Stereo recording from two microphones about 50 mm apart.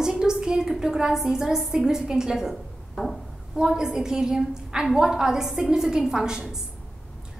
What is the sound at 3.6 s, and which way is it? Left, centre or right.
A woman's voice, centre.